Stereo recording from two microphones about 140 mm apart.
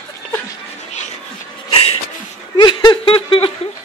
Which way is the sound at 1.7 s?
45° left (ahead or behind).